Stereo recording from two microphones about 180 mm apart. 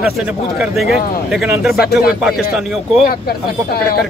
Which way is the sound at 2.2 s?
Centre (ahead or behind).